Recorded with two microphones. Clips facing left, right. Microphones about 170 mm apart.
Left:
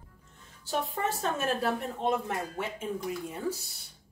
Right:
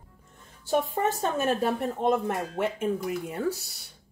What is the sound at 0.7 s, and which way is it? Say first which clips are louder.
Speech: right 6 dB; 45° right (ahead or behind).